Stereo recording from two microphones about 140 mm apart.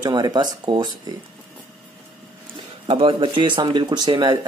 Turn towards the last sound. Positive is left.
turn(degrees=-30)  # may be behind; listen again after turning